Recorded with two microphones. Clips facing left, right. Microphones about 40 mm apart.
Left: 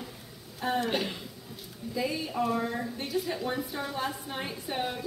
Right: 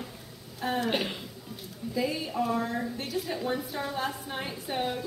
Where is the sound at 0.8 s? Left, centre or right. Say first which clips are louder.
Right 1 dB; centre.